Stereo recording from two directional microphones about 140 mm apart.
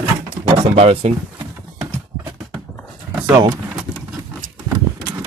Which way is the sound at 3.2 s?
25° right (ahead or behind).